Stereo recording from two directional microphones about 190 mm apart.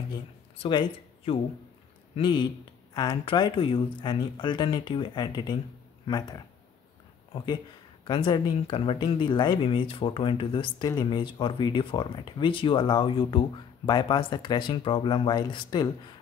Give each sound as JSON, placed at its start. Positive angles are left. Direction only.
{"t": 0.6, "sound": "speech", "side_deg": 25}
{"t": 8.1, "sound": "speech", "side_deg": 25}